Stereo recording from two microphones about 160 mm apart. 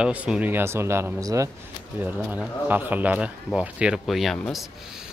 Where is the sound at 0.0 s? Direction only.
5° right (ahead or behind).